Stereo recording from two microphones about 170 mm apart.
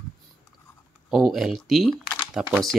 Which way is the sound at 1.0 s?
Centre (ahead or behind).